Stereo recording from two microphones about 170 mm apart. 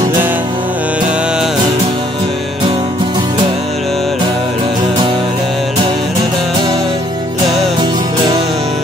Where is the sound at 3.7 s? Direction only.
Centre (ahead or behind).